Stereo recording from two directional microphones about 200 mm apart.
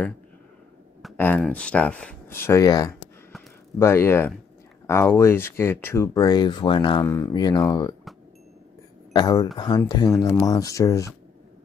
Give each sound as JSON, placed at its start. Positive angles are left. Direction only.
{"t": 1.1, "sound": "speech", "side_deg": 10}
{"t": 9.1, "sound": "speech", "side_deg": 20}